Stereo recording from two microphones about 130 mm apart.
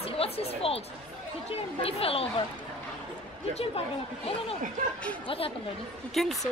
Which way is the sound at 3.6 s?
50° left (ahead or behind).